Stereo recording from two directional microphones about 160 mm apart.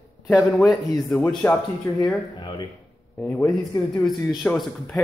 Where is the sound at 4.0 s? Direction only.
Centre (ahead or behind).